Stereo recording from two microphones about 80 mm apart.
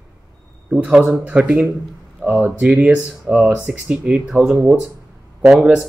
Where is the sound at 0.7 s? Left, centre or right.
Centre.